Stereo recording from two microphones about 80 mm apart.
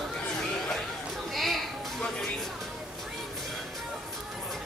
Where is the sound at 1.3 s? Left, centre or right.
Centre.